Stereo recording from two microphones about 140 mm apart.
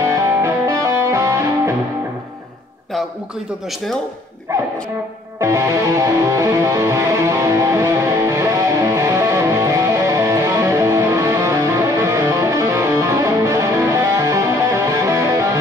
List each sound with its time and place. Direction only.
0.0 s music: 20° right (ahead or behind)
5.4 s music: 20° right (ahead or behind)